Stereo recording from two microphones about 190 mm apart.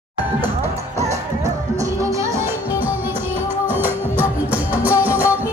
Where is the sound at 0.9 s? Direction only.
35° right (ahead or behind).